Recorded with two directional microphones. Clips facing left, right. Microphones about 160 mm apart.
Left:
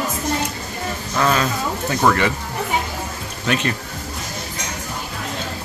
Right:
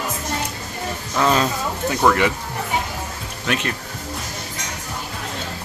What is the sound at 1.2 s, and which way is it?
Speech, 15° right (ahead or behind).